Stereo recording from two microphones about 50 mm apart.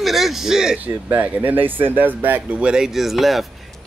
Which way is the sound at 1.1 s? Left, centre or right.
Right.